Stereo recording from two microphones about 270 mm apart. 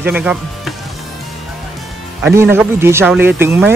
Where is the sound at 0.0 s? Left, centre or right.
Centre.